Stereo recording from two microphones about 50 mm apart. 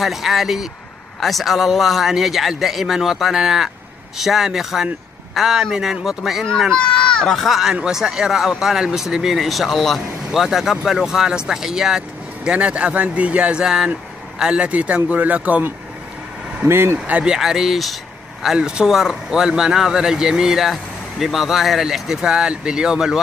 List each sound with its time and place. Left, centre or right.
0.0 s a man's voice: centre
6.7 s children playing: centre
7.2 s a man's voice: centre
12.4 s speech: right
16.6 s speech: right
17.0 s speech: right
17.4 s a man's voice: centre